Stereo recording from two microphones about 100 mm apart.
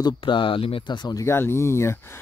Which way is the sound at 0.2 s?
55° left (ahead or behind).